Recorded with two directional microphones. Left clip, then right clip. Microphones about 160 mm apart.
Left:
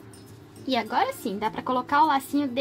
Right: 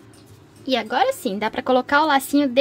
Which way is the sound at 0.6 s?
30° right (ahead or behind).